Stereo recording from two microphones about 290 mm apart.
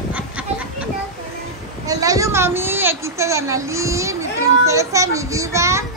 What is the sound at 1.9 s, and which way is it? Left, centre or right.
A woman's voice, centre.